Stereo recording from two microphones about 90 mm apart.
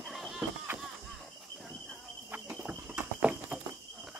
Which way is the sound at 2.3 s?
20° right (ahead or behind).